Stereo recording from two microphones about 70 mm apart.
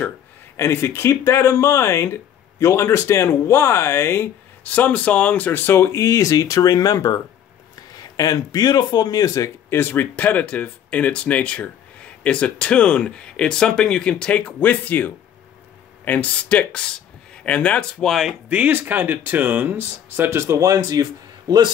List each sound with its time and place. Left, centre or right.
0.6 s speech: left
4.6 s speech: left
8.2 s speech: left
9.7 s speech: left; by 17.8 s centre
18.0 s speech: centre
18.5 s speech: right
20.2 s speech: right
21.0 s a man's voice: right